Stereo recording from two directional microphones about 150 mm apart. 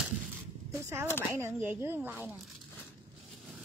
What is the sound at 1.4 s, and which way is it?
Speech, 15° right (ahead or behind).